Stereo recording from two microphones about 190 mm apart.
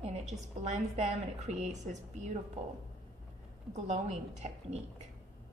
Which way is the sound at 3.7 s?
35° right (ahead or behind).